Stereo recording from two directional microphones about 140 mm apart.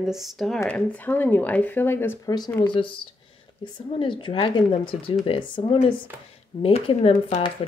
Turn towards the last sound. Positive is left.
turn(degrees=40)  # may be behind; listen again after turning